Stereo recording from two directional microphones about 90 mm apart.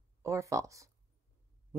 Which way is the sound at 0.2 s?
35° right (ahead or behind).